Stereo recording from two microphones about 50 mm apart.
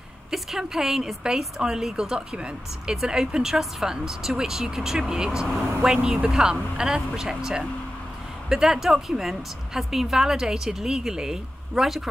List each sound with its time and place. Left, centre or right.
0.3 s a woman's voice: centre